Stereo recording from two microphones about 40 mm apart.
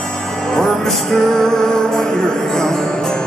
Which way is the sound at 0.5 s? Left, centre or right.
Centre.